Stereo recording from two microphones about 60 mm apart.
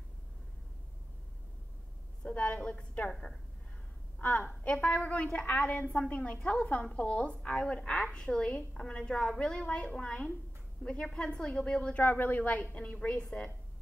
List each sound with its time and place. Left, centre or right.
2.2 s a woman's voice: centre
4.2 s a woman's voice: left
12.0 s a woman's voice: left